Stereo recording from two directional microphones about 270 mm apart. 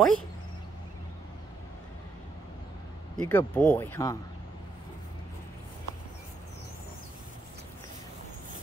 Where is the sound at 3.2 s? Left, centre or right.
Centre.